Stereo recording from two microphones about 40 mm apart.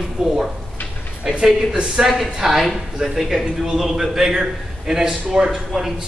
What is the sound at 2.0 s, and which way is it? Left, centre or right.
A man's voice, centre.